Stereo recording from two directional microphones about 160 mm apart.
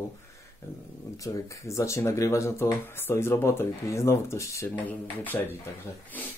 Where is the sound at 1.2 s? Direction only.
20° left (ahead or behind).